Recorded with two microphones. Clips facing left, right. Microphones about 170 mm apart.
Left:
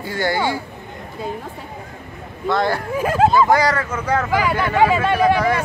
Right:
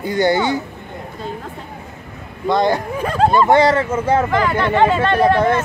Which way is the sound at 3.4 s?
25° right (ahead or behind).